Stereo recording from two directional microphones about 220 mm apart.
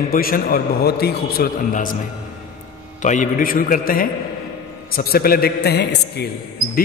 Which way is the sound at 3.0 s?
35° left (ahead or behind).